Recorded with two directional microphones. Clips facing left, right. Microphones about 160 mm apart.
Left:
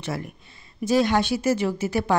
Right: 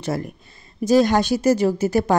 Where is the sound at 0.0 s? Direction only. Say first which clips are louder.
Right 5 dB; 40° right (ahead or behind).